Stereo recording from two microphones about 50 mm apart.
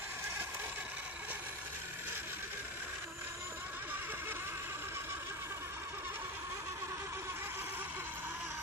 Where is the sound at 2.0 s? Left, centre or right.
Right.